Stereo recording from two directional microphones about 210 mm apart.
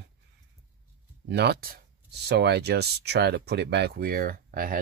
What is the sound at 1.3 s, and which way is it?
Speech, 50° right (ahead or behind).